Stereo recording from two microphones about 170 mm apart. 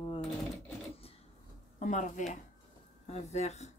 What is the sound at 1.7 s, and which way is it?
A woman's voice, 45° left (ahead or behind).